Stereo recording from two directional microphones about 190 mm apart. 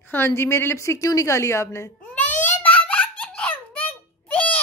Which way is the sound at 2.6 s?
10° left (ahead or behind).